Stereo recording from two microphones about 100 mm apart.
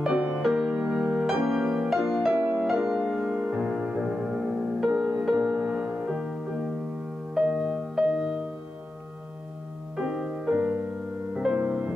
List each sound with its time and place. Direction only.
0.0 s music: 10° right (ahead or behind)
2.3 s music: 20° right (ahead or behind)
2.6 s music: 5° right (ahead or behind)
9.9 s music: 5° right (ahead or behind)